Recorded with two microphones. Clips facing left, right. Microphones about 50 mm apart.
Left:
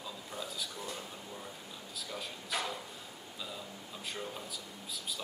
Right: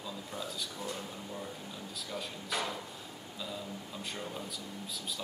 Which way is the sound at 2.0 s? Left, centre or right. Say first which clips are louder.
Right 1 dB; centre.